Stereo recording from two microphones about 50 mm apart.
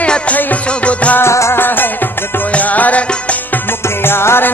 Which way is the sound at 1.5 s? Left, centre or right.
Left.